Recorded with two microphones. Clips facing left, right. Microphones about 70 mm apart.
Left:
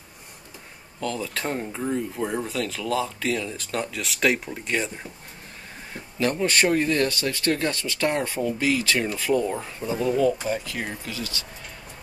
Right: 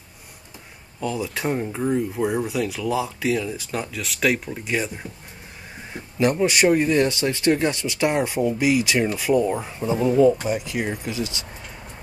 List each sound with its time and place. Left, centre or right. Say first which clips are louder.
1.0 s speech: right 3 dB; centre
6.1 s speech: right 3 dB; centre